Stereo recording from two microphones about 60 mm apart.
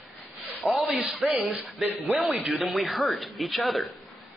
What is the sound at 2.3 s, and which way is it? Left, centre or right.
Speech, centre.